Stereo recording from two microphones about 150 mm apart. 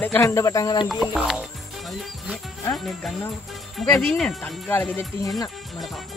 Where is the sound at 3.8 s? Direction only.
Centre (ahead or behind).